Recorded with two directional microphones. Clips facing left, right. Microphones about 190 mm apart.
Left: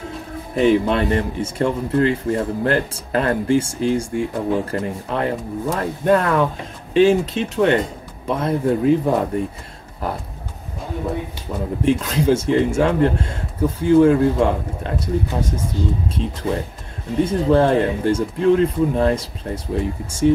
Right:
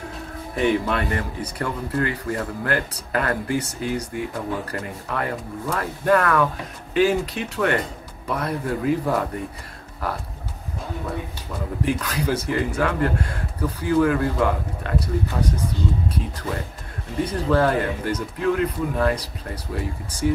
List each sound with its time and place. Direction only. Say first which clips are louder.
0.6 s speech: left 5 dB; 25° left (ahead or behind)
11.8 s speech: left 6 dB; 25° left (ahead or behind)
17.2 s speech: left 5 dB; 25° left (ahead or behind)